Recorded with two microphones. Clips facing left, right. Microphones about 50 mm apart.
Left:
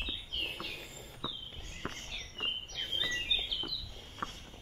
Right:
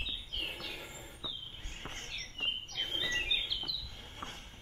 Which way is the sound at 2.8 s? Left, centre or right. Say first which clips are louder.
Right 1 dB; right.